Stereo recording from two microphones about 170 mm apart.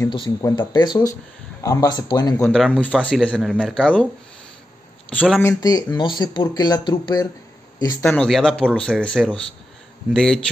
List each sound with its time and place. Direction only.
0.0 s speech: 25° left (ahead or behind)
2.3 s speech: 5° left (ahead or behind)
5.1 s speech: 5° left (ahead or behind)